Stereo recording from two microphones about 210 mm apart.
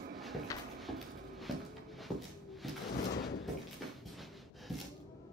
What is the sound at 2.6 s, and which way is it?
Sliding door, centre (ahead or behind).